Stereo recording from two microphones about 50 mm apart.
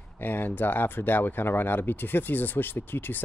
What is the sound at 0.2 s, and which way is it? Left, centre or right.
Speech, left.